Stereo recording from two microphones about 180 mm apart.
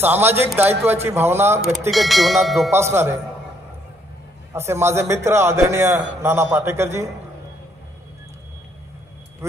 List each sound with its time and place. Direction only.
0.0 s a man's voice: 10° right (ahead or behind)
1.9 s bell: centre (ahead or behind)
2.7 s a man's voice: 15° right (ahead or behind)
4.6 s a man's voice: 15° right (ahead or behind)